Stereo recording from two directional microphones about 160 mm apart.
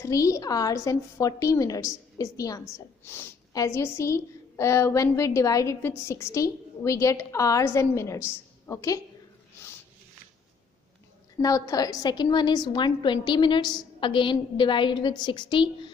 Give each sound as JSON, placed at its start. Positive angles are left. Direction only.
{"t": 0.0, "sound": "a woman's voice", "side_deg": 20}
{"t": 11.4, "sound": "a woman's voice", "side_deg": 20}